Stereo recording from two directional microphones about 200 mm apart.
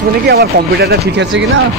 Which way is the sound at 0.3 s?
55° right (ahead or behind).